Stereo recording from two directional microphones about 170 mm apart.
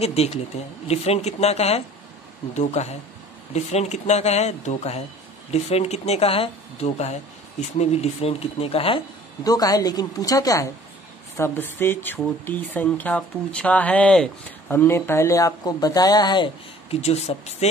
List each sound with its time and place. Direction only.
0.0 s speech: 40° left (ahead or behind)
16.9 s speech: 40° left (ahead or behind)